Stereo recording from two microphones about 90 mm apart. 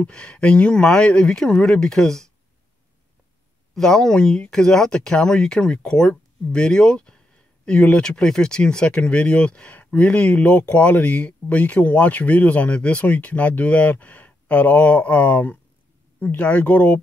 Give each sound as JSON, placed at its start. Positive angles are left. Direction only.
{"t": 0.0, "sound": "speech", "side_deg": 10}
{"t": 3.7, "sound": "speech", "side_deg": 5}